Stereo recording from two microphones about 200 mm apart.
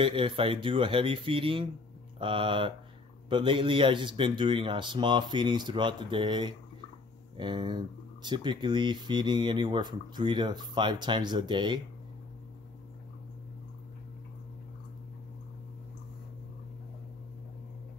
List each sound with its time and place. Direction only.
0.0 s speech: 25° right (ahead or behind)